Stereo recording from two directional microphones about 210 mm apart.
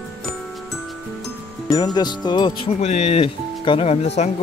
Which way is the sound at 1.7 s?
20° left (ahead or behind).